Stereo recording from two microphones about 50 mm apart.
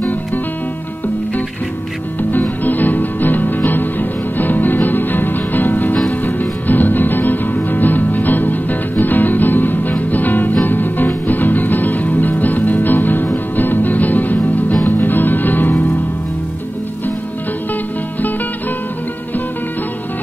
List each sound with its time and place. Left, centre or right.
2.6 s music: left